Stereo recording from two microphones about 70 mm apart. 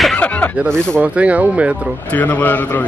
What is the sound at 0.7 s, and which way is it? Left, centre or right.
Speech, centre.